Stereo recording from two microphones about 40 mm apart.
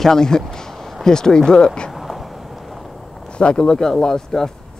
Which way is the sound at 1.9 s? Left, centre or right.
Centre.